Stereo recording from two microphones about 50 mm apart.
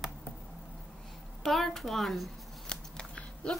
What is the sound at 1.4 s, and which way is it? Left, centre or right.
Speech, centre.